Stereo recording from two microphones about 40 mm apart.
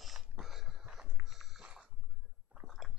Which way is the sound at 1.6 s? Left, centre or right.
Centre.